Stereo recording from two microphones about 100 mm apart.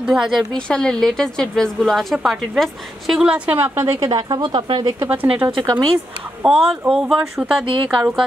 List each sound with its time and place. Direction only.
0.0 s a woman's voice: 5° right (ahead or behind)
0.7 s a woman's voice: 10° left (ahead or behind)
3.4 s a woman's voice: 20° right (ahead or behind)
3.7 s a woman's voice: 30° right (ahead or behind); by 4.9 s 50° right (ahead or behind)
5.1 s speech: 15° right (ahead or behind)
5.5 s a woman's voice: 45° right (ahead or behind)
6.5 s speech: 10° right (ahead or behind)
7.6 s speech: 55° right (ahead or behind)